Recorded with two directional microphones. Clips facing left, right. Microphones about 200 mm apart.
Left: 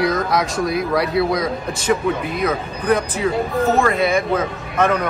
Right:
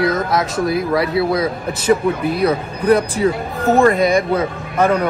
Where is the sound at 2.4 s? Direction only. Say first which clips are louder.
Right 4 dB; 35° right (ahead or behind).